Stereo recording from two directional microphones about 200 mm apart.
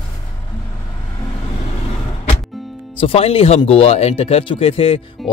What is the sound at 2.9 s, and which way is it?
Speech, 30° left (ahead or behind).